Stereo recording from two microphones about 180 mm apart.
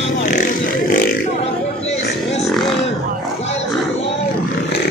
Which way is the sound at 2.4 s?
Centre (ahead or behind).